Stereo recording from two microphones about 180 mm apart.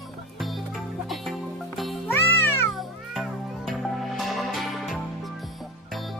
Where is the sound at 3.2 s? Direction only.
Centre (ahead or behind).